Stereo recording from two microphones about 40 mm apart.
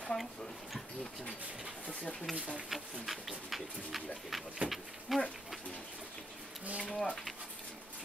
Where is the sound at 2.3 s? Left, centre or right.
Right.